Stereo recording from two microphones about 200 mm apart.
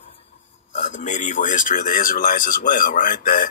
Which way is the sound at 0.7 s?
40° left (ahead or behind).